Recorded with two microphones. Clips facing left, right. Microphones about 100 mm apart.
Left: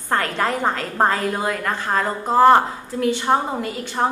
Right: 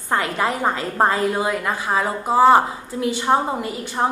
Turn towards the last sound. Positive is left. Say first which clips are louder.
# even
turn(degrees=-10)  # may be behind; listen again after turning